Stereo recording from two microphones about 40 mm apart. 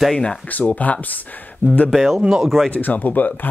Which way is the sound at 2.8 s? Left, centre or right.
Left.